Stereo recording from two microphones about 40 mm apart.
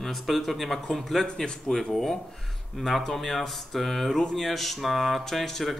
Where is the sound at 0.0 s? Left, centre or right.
Centre.